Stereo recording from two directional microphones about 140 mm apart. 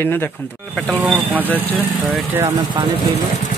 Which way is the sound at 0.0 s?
15° left (ahead or behind).